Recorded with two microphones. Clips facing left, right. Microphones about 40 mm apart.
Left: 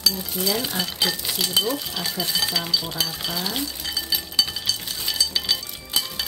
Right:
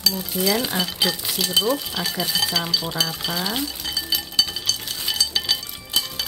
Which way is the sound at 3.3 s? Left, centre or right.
Centre.